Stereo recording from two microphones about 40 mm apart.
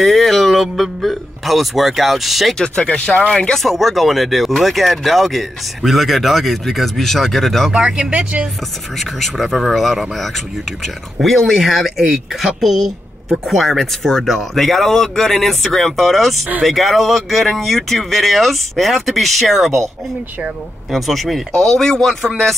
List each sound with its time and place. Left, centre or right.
0.0 s speech: centre
3.1 s speech: centre
3.6 s speech: centre
7.7 s speech: right
9.5 s speech: centre
20.9 s speech: centre
21.5 s speech: centre